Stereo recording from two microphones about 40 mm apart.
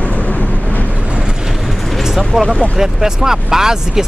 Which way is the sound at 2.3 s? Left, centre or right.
Centre.